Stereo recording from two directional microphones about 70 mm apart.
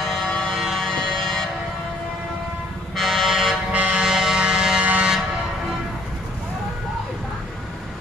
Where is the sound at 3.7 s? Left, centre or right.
Centre.